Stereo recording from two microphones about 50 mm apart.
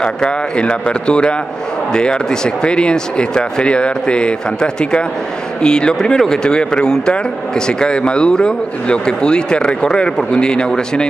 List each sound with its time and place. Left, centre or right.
0.0 s speech: centre